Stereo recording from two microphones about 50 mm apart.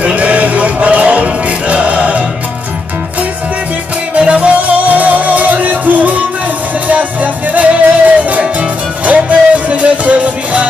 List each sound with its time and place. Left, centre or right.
0.0 s music: right
4.1 s music: right